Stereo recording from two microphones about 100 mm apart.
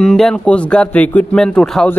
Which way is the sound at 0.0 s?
5° left (ahead or behind).